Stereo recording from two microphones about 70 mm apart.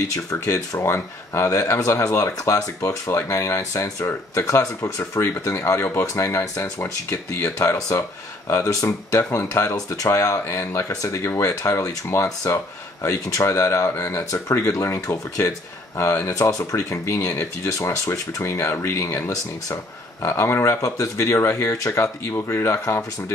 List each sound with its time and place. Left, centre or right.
0.1 s speech: left
0.7 s speech: left
4.5 s speech: left